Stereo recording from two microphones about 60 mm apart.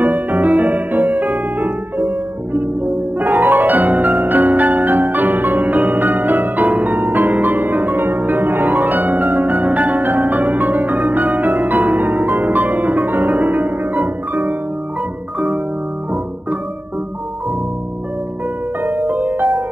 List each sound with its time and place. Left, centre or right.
0.0 s music: right
3.2 s music: right
18.8 s music: right